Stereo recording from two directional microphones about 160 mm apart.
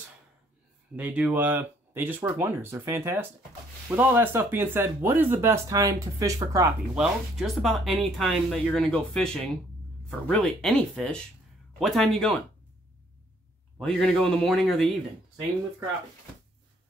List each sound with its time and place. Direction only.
0.9 s speech: 10° right (ahead or behind)
7.0 s speech: centre (ahead or behind)
13.7 s speech: 5° left (ahead or behind)